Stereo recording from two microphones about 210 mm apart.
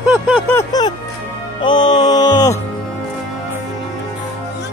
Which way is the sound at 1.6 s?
20° left (ahead or behind).